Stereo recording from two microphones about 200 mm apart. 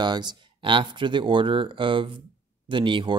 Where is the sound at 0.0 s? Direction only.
20° right (ahead or behind).